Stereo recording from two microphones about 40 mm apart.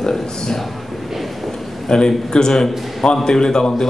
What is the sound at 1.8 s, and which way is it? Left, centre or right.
A man's voice, centre.